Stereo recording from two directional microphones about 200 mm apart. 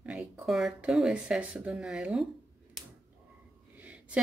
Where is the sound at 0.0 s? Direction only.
5° right (ahead or behind).